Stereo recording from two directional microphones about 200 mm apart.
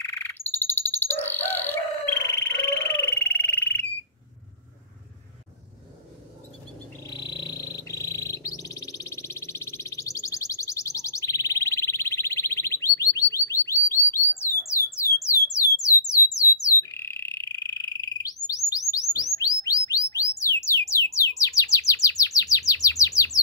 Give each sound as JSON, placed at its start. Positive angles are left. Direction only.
{"t": 0.0, "sound": "alarm", "side_deg": 10}
{"t": 1.2, "sound": "chicken", "side_deg": 10}
{"t": 7.1, "sound": "bird", "side_deg": 20}
{"t": 15.2, "sound": "a sound", "side_deg": 15}
{"t": 16.3, "sound": "frog", "side_deg": 15}
{"t": 18.7, "sound": "bird", "side_deg": 15}
{"t": 20.1, "sound": "music", "side_deg": 15}
{"t": 20.6, "sound": "bird", "side_deg": 15}